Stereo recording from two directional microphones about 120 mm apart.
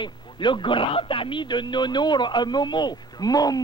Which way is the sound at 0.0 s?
40° left (ahead or behind).